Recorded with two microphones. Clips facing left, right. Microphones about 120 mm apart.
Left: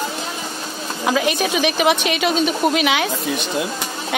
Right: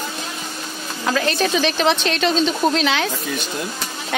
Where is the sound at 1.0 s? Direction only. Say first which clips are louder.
Left 1 dB; 15° left (ahead or behind).